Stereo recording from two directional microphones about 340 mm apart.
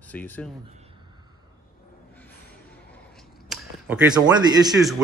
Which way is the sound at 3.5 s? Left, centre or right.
Centre.